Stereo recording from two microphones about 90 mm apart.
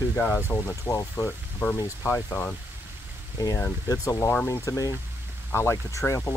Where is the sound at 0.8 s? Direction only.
40° left (ahead or behind).